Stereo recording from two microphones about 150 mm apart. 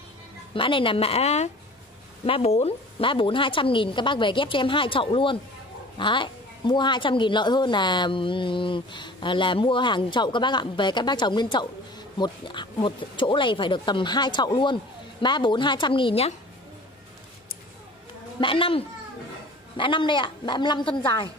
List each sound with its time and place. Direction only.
0.6 s a woman's voice: 35° left (ahead or behind)
18.4 s a woman's voice: 35° left (ahead or behind)